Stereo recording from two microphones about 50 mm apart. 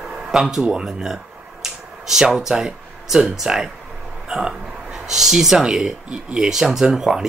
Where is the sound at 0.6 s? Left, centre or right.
Centre.